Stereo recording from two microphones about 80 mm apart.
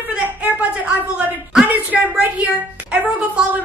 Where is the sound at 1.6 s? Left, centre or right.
Right.